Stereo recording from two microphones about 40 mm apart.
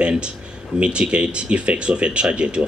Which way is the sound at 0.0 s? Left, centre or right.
Right.